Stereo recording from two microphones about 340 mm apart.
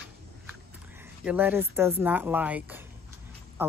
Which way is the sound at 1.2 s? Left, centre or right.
Centre.